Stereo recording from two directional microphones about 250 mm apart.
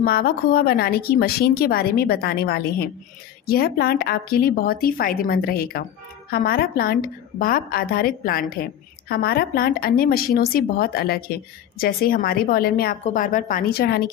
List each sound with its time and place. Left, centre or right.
0.0 s speech: left